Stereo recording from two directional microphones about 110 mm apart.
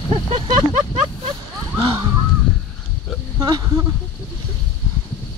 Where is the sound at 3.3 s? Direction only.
35° right (ahead or behind).